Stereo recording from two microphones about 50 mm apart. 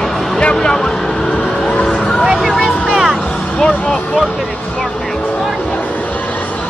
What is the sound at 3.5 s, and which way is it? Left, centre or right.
Music, centre.